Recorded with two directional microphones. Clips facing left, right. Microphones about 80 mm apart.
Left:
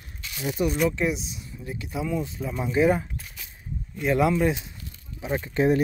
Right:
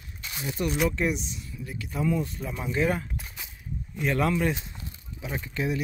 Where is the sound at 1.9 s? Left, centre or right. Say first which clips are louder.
Right 1 dB; centre.